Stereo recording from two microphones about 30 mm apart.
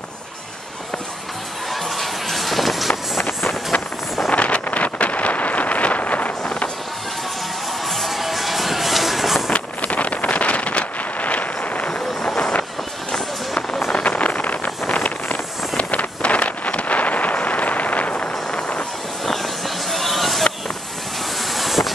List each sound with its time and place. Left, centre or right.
1.7 s music: centre
2.9 s vehicle: centre
4.3 s wind noise: left
7.8 s music: centre
8.1 s music: centre
9.5 s vehicle: left
13.9 s vehicle: left
14.9 s wind noise: left
15.8 s vehicle: left
19.2 s a sound: centre
21.4 s vehicle: centre